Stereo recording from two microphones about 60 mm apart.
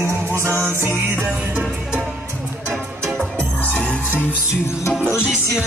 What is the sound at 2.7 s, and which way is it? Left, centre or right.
Music, centre.